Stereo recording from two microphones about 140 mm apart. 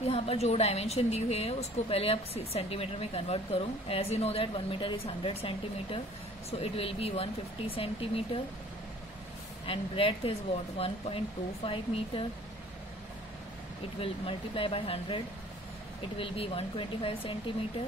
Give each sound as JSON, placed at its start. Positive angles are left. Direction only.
{"t": 0.0, "sound": "a woman's voice", "side_deg": 45}
{"t": 9.7, "sound": "speech", "side_deg": 40}
{"t": 13.9, "sound": "speech", "side_deg": 40}